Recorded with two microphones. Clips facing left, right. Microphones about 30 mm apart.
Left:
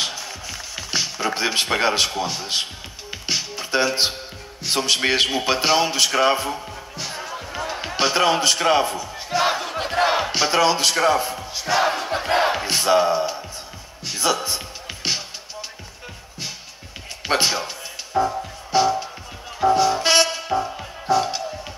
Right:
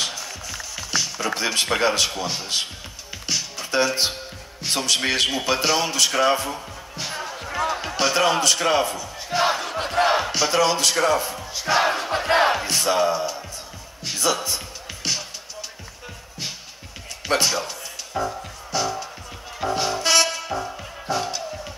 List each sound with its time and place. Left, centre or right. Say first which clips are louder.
0.0 s a sound: left 1 dB; centre
3.1 s music: left 2 dB; left
4.6 s a man's voice: left 2 dB; centre
7.0 s music: right 1 dB; centre
7.9 s speech: left 3 dB; centre
9.4 s battle cry: even; centre
10.3 s speech: left 2 dB; centre
11.6 s crowd: even; centre
12.5 s music: left 3 dB; centre
14.2 s speech: left 1 dB; centre
17.2 s music: left 1 dB; left